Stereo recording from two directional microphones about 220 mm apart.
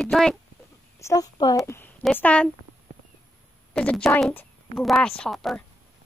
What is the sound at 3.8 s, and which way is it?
A woman's voice, 5° left (ahead or behind).